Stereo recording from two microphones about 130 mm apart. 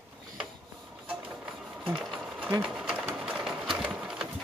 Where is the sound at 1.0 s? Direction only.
10° right (ahead or behind).